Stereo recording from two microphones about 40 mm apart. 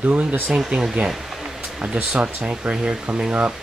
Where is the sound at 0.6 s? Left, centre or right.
Right.